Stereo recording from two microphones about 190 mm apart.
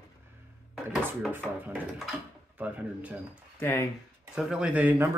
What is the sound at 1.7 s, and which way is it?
Speech, 5° right (ahead or behind).